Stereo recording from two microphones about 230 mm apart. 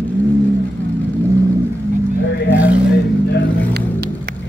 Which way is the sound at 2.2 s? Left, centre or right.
Left.